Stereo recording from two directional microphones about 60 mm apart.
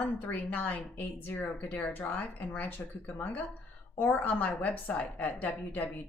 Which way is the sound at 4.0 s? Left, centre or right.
Left.